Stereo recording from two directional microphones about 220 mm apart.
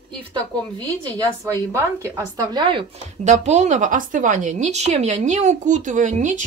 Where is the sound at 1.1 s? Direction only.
15° right (ahead or behind).